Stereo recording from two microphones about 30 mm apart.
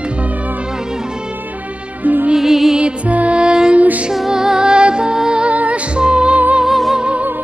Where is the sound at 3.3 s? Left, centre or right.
Right.